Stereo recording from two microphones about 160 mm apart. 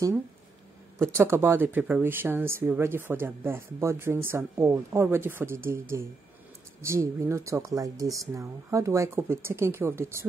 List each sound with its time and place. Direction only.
1.1 s speech: 15° right (ahead or behind)